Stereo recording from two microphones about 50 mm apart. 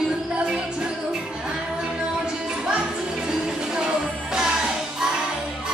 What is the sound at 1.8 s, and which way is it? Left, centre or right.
Music, centre.